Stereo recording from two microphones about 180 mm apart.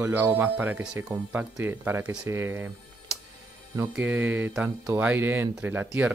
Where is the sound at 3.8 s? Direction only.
10° right (ahead or behind).